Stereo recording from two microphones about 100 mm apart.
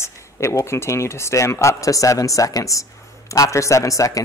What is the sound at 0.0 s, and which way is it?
Speech, 30° left (ahead or behind).